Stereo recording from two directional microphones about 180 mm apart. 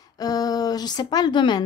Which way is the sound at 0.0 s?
20° left (ahead or behind).